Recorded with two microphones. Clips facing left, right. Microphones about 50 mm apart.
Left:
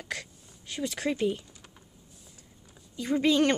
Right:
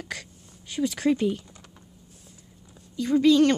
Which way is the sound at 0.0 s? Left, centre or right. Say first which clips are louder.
Right 1 dB; centre.